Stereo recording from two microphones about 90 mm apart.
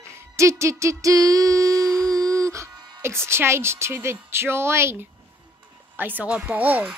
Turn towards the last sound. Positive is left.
turn(degrees=-20)  # may be behind; listen again after turning